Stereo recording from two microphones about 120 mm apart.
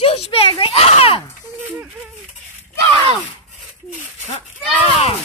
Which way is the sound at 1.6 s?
15° right (ahead or behind).